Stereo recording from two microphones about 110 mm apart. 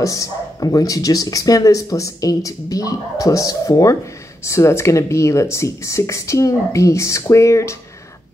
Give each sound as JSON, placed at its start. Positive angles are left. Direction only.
{"t": 0.0, "sound": "speech", "side_deg": 30}